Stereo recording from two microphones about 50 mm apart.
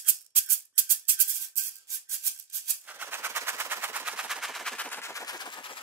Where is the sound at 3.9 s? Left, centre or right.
Right.